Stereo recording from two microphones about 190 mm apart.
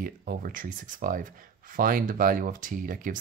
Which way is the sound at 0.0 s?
50° right (ahead or behind).